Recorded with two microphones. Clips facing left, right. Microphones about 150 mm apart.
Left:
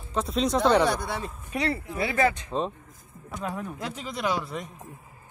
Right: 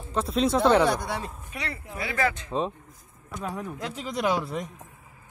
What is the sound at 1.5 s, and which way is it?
Speech, 30° left (ahead or behind).